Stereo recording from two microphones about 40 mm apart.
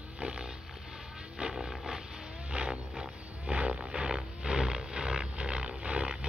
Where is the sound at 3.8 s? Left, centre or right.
Centre.